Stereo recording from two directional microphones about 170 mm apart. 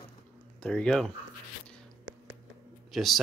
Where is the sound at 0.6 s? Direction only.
5° left (ahead or behind).